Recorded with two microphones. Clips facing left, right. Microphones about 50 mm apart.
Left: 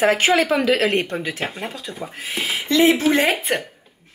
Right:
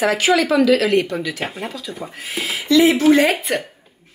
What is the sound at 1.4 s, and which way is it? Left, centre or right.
Speech, centre.